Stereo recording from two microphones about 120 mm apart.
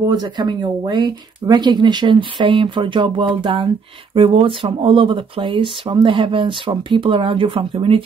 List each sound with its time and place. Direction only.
0.1 s speech: 35° right (ahead or behind)